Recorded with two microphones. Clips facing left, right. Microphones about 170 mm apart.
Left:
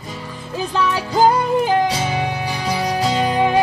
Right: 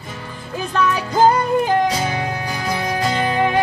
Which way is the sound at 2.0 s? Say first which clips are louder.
Left 1 dB; 5° left (ahead or behind).